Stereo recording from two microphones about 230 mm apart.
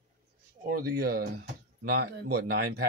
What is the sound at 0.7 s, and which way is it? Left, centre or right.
Speech, right.